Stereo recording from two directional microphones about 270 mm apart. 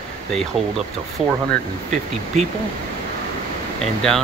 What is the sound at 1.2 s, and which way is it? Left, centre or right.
Speech, centre.